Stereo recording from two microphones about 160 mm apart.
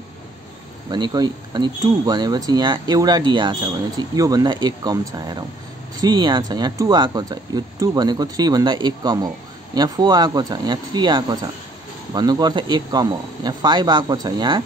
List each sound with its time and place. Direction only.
0.8 s speech: 25° right (ahead or behind)